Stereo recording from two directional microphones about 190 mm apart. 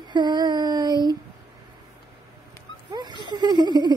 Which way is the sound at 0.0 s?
20° right (ahead or behind).